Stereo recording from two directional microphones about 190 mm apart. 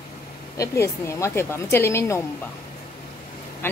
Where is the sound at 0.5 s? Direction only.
15° left (ahead or behind).